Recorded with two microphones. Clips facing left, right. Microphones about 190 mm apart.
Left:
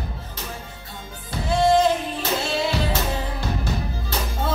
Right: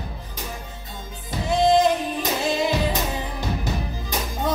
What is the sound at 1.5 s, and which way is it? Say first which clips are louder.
Music: even; 20° right (ahead or behind).